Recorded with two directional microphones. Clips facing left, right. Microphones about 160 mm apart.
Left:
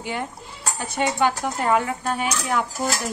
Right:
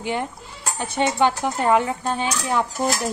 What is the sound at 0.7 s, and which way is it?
Speech, 25° right (ahead or behind).